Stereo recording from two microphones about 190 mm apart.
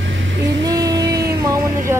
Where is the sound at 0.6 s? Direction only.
20° right (ahead or behind).